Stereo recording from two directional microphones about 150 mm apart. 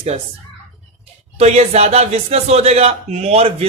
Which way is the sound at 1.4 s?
45° right (ahead or behind).